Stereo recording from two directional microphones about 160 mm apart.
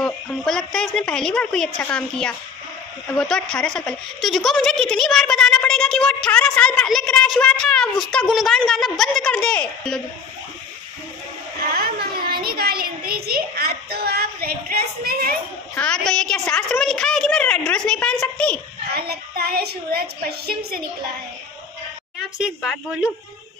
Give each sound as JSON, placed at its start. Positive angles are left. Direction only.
{"t": 0.0, "sound": "speech", "side_deg": 5}
{"t": 11.7, "sound": "a sound", "side_deg": -70}
{"t": 15.7, "sound": "speech", "side_deg": 5}
{"t": 18.9, "sound": "a woman's voice", "side_deg": -75}
{"t": 22.4, "sound": "speech", "side_deg": 0}